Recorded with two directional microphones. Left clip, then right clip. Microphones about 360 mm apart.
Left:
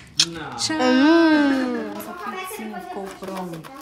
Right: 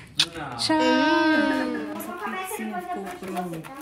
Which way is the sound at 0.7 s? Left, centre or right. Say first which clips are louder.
Left 4 dB; left.